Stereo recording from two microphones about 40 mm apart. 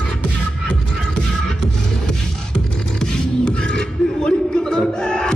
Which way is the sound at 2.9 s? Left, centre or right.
Left.